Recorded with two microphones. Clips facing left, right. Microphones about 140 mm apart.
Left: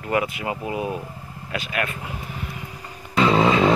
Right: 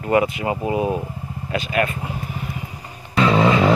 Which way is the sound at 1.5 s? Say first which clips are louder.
Right 6 dB; centre (ahead or behind).